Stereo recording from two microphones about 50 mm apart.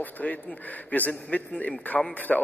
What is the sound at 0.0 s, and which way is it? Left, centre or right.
A man's voice, left.